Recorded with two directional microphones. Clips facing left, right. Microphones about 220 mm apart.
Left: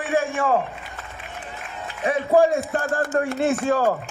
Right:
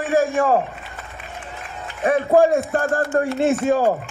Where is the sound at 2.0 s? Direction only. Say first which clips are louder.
Right 4 dB; 50° right (ahead or behind).